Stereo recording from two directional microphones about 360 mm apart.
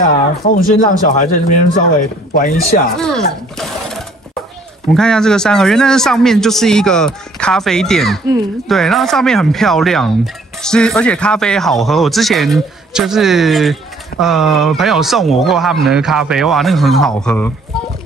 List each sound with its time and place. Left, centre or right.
0.0 s speech: left
3.0 s speech: centre